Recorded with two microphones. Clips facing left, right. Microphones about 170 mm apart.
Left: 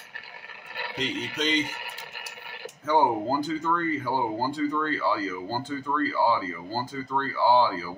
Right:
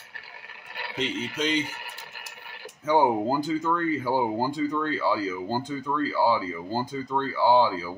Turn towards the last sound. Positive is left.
turn(degrees=-15)  # may be behind; listen again after turning